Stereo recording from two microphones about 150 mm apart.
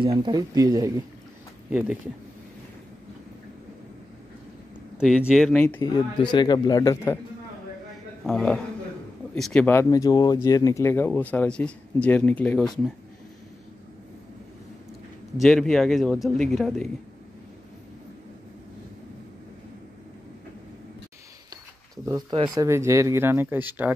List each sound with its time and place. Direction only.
0.0 s speech: 30° right (ahead or behind)
1.7 s speech: 10° right (ahead or behind)
4.9 s a man's voice: 5° right (ahead or behind)
5.8 s a man's voice: 30° left (ahead or behind)
8.3 s a man's voice: 5° left (ahead or behind)
9.8 s speech: 25° left (ahead or behind); by 12.6 s 10° left (ahead or behind)
15.4 s a man's voice: 5° left (ahead or behind)
22.1 s speech: 30° right (ahead or behind); by 23.9 s 15° right (ahead or behind)